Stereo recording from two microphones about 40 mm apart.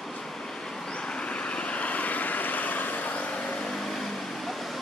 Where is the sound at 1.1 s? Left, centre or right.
Left.